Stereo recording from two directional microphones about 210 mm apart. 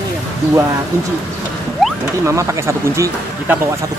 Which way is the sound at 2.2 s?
15° right (ahead or behind).